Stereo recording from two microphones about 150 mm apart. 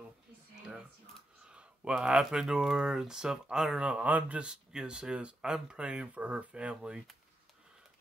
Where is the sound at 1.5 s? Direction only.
5° right (ahead or behind).